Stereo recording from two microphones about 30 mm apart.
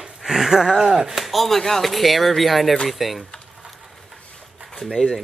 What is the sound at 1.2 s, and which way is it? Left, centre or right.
Speech, centre.